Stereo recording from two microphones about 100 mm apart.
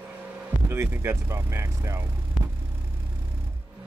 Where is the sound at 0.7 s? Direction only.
25° right (ahead or behind).